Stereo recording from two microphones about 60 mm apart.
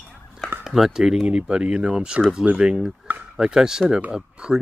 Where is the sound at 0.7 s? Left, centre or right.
Centre.